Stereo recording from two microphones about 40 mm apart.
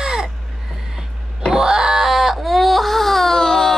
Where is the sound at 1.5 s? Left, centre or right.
Centre.